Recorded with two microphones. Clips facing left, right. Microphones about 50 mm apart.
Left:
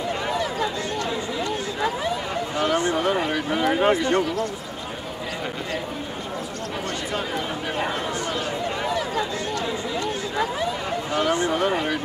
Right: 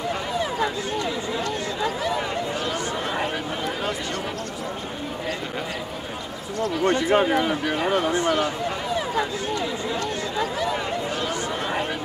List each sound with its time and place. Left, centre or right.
0.4 s run: right
2.6 s a sound: left
3.7 s speech: left
6.6 s a man's voice: right
9.9 s chatter: left
11.1 s speech: left